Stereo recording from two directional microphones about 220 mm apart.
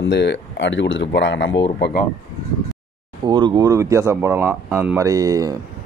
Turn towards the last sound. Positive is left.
turn(degrees=-15)  # may be behind; listen again after turning